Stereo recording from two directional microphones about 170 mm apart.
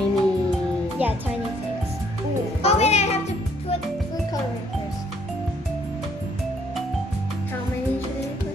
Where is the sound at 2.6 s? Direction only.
40° left (ahead or behind).